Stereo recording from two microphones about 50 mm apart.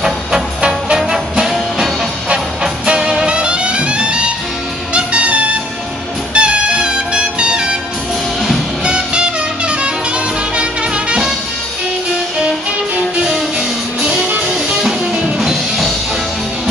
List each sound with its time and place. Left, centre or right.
0.6 s music: centre
8.8 s music: centre
13.2 s music: centre